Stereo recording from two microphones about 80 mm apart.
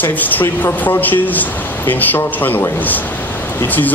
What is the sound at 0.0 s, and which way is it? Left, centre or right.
A man's voice, left.